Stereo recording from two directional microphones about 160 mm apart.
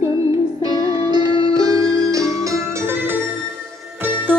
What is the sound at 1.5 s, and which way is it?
Music, 25° right (ahead or behind).